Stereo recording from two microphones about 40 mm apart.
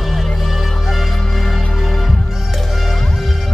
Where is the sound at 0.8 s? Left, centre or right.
Centre.